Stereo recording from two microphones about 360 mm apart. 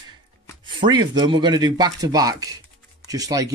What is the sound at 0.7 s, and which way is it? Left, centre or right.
Speech, centre.